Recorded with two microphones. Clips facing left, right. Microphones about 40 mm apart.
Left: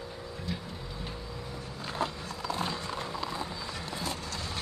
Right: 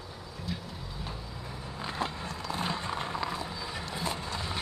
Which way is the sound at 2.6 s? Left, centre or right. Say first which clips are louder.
Right 4 dB; centre.